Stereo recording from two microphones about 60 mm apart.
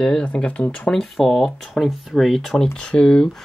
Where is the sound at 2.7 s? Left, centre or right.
Centre.